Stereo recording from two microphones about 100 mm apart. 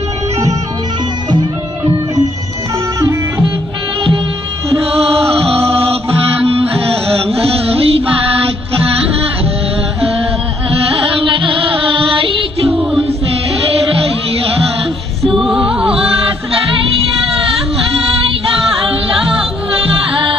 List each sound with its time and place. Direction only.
3.0 s music: 30° right (ahead or behind)
5.5 s music: 75° right (ahead or behind)
7.2 s carnatic music: 75° right (ahead or behind)
11.2 s music: 60° right (ahead or behind)
12.6 s music: 5° right (ahead or behind)
15.3 s music: centre (ahead or behind)